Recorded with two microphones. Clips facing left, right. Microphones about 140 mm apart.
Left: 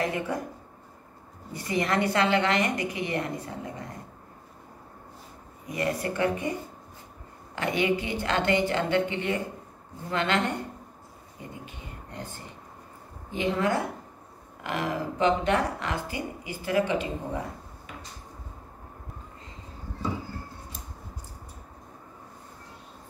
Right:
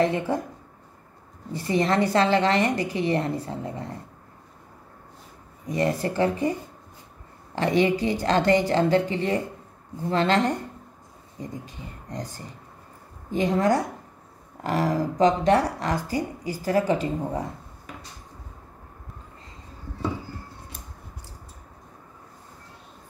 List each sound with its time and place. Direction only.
0.0 s speech: 25° right (ahead or behind)
1.5 s a woman's voice: 30° right (ahead or behind)
5.7 s a woman's voice: 30° right (ahead or behind)
7.5 s a woman's voice: 35° right (ahead or behind)